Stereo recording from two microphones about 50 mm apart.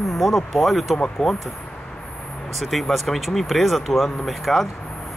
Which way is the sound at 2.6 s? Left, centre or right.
Centre.